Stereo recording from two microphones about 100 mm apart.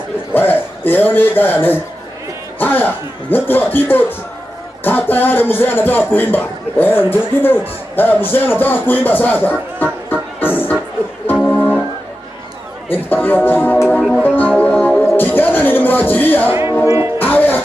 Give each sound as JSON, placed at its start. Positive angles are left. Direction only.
{"t": 0.3, "sound": "a man's voice", "side_deg": 20}
{"t": 11.2, "sound": "music", "side_deg": 15}
{"t": 12.9, "sound": "speech", "side_deg": 20}
{"t": 14.2, "sound": "music", "side_deg": 20}